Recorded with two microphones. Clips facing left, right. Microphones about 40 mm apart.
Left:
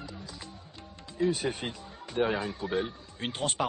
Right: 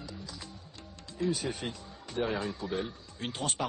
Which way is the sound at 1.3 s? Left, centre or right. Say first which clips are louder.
Left 2 dB; left.